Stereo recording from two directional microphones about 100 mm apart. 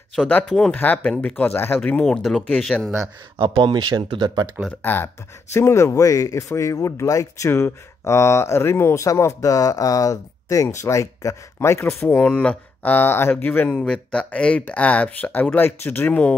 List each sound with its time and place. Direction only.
0.5 s speech: 5° left (ahead or behind)
0.7 s speech: 15° left (ahead or behind)
3.3 s speech: 60° right (ahead or behind)
4.8 s speech: 25° left (ahead or behind)
12.2 s speech: 15° left (ahead or behind)